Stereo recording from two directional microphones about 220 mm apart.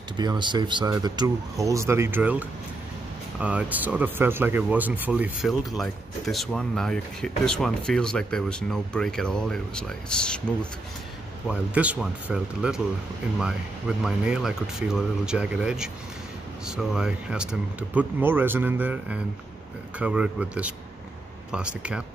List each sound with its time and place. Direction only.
0.2 s speech: 20° right (ahead or behind)